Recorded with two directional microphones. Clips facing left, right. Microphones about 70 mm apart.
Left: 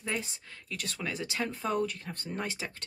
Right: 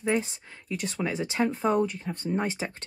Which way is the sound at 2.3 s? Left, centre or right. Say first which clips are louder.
Right 7 dB; right.